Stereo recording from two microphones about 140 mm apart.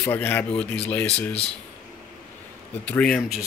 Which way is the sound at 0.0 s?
15° left (ahead or behind).